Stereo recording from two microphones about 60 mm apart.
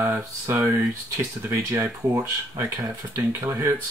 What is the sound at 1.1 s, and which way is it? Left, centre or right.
Speech, right.